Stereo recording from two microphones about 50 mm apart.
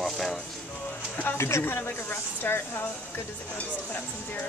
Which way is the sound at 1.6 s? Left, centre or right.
Left.